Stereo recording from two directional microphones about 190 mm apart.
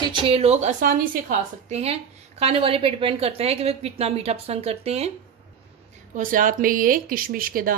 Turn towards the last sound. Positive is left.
turn(degrees=-50)  # may be behind; listen again after turning